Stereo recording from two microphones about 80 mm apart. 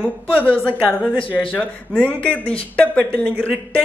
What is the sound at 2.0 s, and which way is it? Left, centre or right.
Speech, centre.